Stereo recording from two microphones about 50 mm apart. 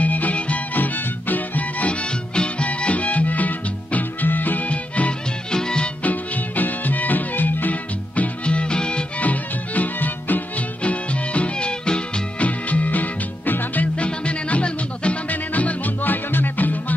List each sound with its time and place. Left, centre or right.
0.0 s music: left
2.3 s music: left
5.5 s music: centre
6.0 s music: left
8.2 s music: left
9.2 s music: left
10.8 s music: left